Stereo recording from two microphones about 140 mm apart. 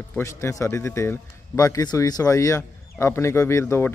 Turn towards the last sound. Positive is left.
turn(degrees=15)  # may be behind; listen again after turning